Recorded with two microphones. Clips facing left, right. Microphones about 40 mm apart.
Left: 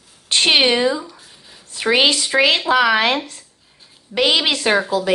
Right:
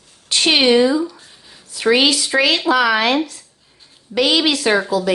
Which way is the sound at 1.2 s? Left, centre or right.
Centre.